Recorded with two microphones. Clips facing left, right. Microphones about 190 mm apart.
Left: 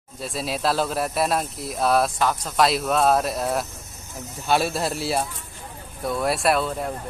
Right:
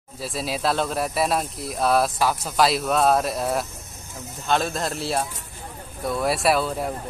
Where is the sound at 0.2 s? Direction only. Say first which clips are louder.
Even; centre (ahead or behind).